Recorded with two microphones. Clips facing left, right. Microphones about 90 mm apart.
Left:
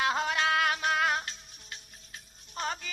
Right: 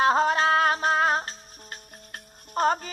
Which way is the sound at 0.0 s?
35° right (ahead or behind).